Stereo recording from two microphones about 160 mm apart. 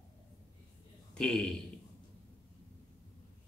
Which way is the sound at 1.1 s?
5° left (ahead or behind).